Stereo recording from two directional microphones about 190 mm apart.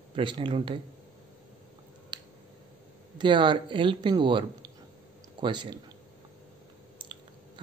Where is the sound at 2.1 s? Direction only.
25° right (ahead or behind).